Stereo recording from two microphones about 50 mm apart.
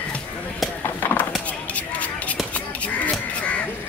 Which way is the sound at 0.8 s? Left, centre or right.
Left.